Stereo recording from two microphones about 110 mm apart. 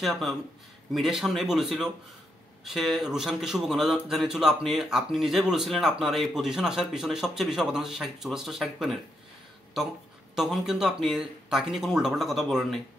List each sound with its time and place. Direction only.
0.0 s speech: centre (ahead or behind)
10.3 s speech: 5° right (ahead or behind)